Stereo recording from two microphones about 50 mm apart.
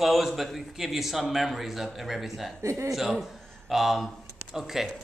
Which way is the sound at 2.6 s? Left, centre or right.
Right.